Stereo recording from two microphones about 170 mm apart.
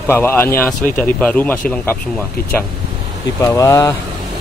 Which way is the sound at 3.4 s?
20° left (ahead or behind).